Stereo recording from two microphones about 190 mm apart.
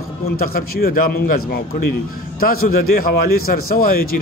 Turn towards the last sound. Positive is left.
turn(degrees=50)  # may be behind; listen again after turning